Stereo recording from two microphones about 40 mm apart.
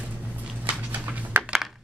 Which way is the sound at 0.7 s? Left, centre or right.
Right.